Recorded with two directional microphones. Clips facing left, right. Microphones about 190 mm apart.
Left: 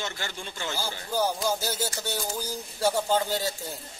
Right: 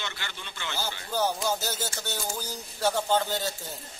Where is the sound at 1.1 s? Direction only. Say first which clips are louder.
Left 1 dB; 10° left (ahead or behind).